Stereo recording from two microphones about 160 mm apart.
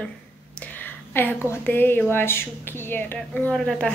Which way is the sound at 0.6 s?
10° left (ahead or behind).